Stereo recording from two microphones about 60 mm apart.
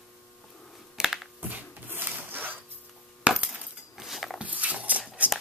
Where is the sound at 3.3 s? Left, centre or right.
Right.